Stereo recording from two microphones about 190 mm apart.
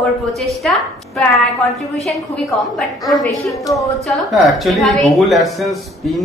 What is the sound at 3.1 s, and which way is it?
Speech, centre (ahead or behind).